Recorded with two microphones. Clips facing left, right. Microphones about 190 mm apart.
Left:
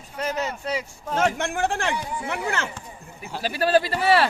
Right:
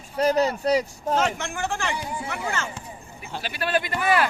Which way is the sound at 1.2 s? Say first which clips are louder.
Left 6 dB; 55° left (ahead or behind).